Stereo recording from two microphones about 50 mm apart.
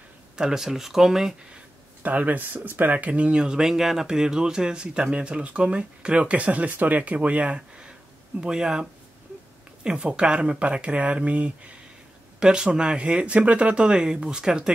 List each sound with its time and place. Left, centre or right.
0.4 s speech: centre
2.0 s speech: right; by 8.8 s centre
9.8 s speech: centre
12.4 s speech: centre